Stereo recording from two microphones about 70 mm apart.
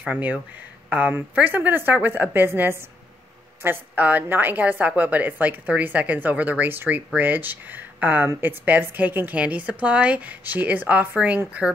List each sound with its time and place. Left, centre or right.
0.8 s a woman's voice: right